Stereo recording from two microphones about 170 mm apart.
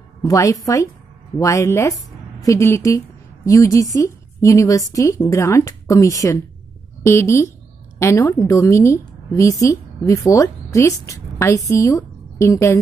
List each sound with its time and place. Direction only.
0.2 s a woman's voice: 20° left (ahead or behind)